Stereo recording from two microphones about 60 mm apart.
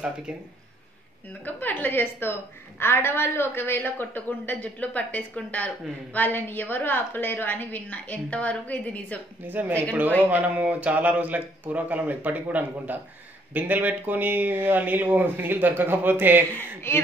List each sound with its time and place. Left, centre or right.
1.4 s a woman's voice: left
9.5 s speech: right
16.9 s a woman's voice: left